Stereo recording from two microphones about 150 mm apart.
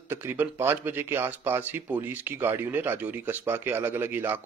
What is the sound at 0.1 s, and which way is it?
Speech, 15° right (ahead or behind).